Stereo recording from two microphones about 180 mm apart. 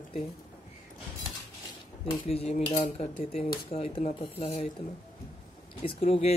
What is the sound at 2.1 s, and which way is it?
A man's voice, 35° left (ahead or behind).